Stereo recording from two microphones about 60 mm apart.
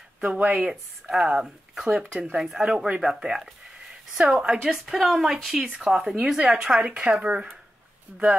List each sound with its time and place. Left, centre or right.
0.2 s a woman's voice: centre